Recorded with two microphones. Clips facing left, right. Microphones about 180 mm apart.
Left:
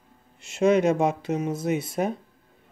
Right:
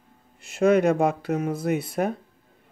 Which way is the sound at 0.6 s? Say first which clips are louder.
Right 1 dB; 55° right (ahead or behind).